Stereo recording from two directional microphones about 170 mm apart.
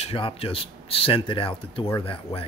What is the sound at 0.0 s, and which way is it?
Speech, 35° left (ahead or behind).